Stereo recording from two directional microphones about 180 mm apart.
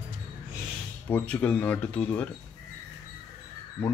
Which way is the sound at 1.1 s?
10° left (ahead or behind).